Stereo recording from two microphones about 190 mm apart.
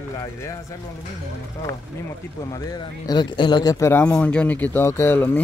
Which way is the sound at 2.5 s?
20° left (ahead or behind).